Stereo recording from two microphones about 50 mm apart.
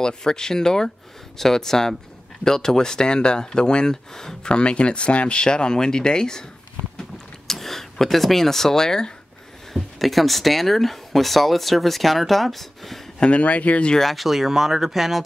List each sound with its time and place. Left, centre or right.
0.0 s speech: centre
7.4 s speech: centre
13.2 s speech: left
13.9 s speech: centre